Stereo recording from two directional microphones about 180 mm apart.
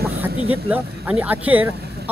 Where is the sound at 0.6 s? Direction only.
10° right (ahead or behind).